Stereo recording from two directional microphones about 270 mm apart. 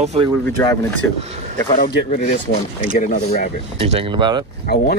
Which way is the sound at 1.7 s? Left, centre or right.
Left.